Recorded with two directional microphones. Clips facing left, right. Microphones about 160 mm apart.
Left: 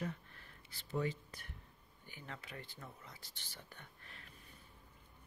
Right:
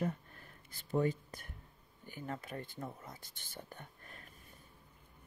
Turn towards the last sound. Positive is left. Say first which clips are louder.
# right 4 dB
turn(degrees=-45)  # may be behind; listen again after turning